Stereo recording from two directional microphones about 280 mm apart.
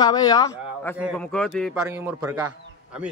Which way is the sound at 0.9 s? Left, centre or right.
Centre.